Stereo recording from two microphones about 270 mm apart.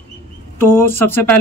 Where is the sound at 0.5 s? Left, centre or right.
Centre.